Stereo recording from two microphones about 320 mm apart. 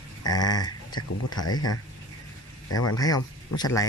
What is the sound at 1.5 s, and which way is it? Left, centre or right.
Speech, left.